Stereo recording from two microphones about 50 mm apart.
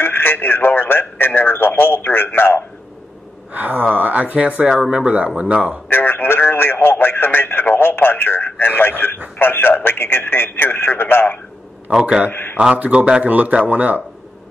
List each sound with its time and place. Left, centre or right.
0.0 s speech: left
3.5 s speech: right
4.6 s speech: centre
5.0 s speech: right
5.9 s speech: left
11.9 s speech: centre
12.3 s speech: left
12.5 s speech: right